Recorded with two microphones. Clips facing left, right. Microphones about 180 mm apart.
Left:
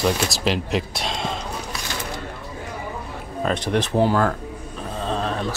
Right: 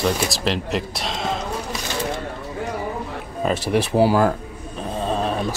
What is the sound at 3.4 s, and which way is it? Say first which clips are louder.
Speech: right 2 dB; 5° right (ahead or behind).